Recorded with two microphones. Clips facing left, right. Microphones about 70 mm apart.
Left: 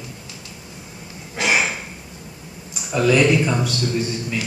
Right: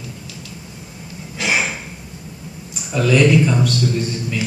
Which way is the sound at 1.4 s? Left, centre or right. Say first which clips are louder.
Left 1 dB; centre.